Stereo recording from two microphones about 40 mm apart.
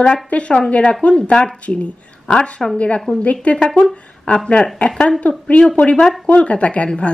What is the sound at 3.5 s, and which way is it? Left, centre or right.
Speech, left.